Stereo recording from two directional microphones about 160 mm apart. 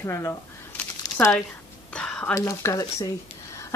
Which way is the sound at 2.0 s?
5° left (ahead or behind).